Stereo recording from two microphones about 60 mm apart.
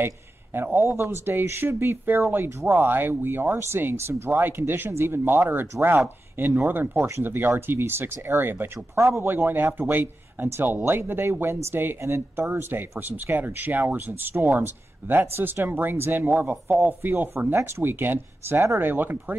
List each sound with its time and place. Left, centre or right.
0.8 s speech: right
8.9 s speech: right
9.3 s speech: right
13.1 s speech: right